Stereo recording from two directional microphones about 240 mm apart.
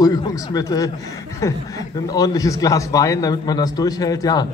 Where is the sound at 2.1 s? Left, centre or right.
Centre.